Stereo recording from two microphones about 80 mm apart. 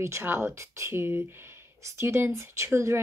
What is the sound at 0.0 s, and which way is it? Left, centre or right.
Speech, right.